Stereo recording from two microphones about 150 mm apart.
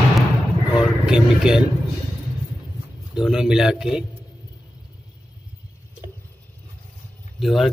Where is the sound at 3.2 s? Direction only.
5° right (ahead or behind).